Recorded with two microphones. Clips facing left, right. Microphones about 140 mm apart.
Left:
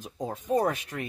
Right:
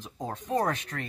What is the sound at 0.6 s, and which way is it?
Speech, 5° left (ahead or behind).